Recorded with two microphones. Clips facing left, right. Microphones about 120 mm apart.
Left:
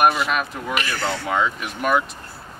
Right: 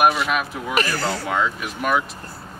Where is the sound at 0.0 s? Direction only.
Centre (ahead or behind).